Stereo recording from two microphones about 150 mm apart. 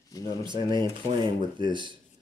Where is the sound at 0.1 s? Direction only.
25° left (ahead or behind).